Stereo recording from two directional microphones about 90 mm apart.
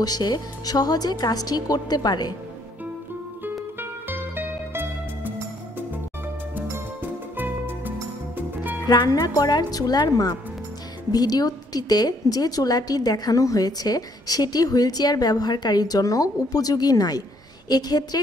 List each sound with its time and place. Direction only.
0.0 s a woman's voice: 50° left (ahead or behind)
3.4 s music: 20° right (ahead or behind)
6.5 s music: 20° right (ahead or behind)
8.8 s a woman's voice: 45° left (ahead or behind)